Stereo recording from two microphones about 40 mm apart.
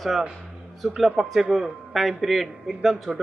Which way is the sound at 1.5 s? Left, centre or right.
Centre.